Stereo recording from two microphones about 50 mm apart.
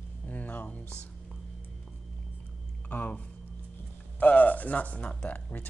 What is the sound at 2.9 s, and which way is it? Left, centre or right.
Speech, left.